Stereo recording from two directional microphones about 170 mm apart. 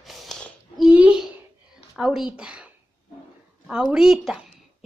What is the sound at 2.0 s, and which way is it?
A woman's voice, 5° right (ahead or behind).